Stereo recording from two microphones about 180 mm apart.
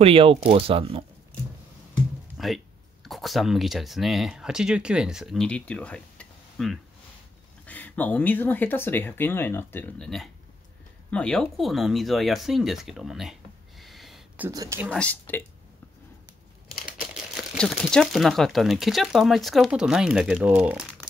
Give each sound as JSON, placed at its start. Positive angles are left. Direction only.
{"t": 0.0, "sound": "speech", "side_deg": -30}
{"t": 2.3, "sound": "speech", "side_deg": 0}
{"t": 14.5, "sound": "speech", "side_deg": -20}
{"t": 15.0, "sound": "speech", "side_deg": 10}
{"t": 16.7, "sound": "speech", "side_deg": -5}